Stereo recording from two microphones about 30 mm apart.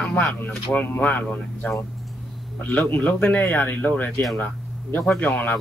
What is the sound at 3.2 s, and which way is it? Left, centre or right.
Speech, left.